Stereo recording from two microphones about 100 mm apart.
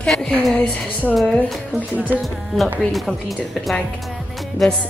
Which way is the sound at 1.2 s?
Centre (ahead or behind).